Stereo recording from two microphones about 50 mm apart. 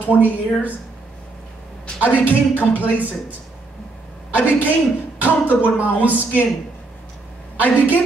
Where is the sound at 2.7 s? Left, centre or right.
Right.